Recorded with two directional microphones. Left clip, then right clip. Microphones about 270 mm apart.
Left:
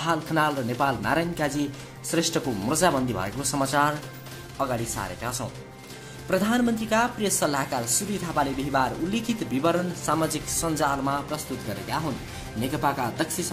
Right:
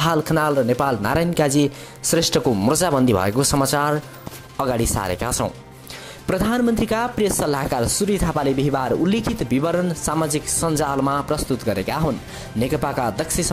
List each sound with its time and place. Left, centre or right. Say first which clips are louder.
0.0 s speech: right 5 dB; right